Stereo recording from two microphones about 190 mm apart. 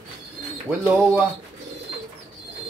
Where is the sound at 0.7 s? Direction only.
5° right (ahead or behind).